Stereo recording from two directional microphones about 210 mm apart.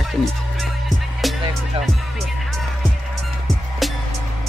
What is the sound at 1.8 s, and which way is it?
Music, 25° right (ahead or behind).